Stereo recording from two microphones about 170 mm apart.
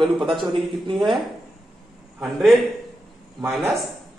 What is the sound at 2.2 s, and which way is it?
Speech, centre (ahead or behind).